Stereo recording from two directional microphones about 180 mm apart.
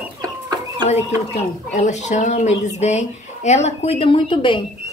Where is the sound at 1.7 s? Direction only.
40° left (ahead or behind).